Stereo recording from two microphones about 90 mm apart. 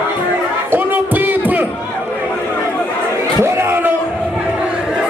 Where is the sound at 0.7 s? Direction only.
20° right (ahead or behind).